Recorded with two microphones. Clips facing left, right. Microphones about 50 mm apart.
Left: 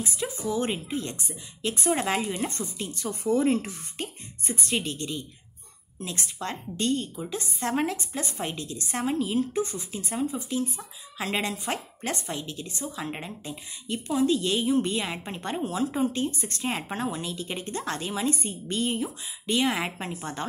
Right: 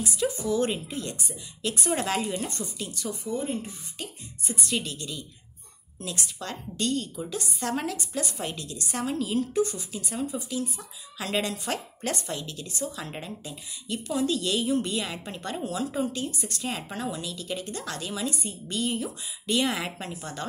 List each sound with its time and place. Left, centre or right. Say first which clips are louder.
0.0 s a woman's voice: right 3 dB; left
3.3 s speech: left 8 dB; left
4.0 s a woman's voice: left 2 dB; left
11.1 s a woman's voice: even; left
19.0 s a woman's voice: even; centre